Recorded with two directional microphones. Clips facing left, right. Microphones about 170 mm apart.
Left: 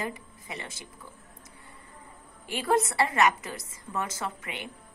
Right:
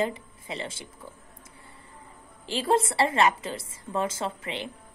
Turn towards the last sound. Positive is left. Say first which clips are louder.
# right 4 dB
turn(degrees=-30)  # may be behind; listen again after turning